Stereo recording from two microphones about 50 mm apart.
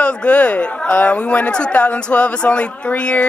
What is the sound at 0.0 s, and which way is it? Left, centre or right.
Speech, left.